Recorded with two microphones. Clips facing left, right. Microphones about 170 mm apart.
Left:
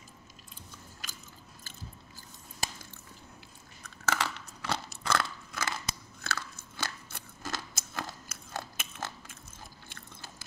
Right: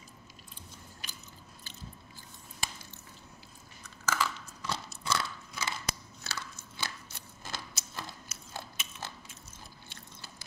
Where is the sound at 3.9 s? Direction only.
65° left (ahead or behind); by 5.7 s 50° left (ahead or behind).